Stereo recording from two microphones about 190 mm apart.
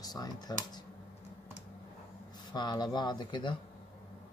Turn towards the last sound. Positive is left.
turn(degrees=25)  # may be behind; listen again after turning